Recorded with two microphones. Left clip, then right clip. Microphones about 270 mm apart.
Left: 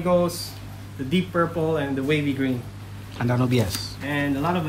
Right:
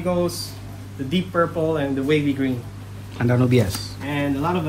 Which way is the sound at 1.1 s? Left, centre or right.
Centre.